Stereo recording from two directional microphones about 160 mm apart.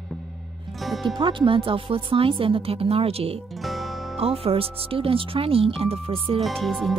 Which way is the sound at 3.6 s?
Centre (ahead or behind).